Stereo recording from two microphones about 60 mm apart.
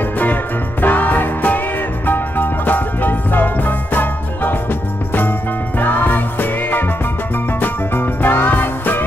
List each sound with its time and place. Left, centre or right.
0.2 s music: left
5.8 s music: left
7.6 s music: left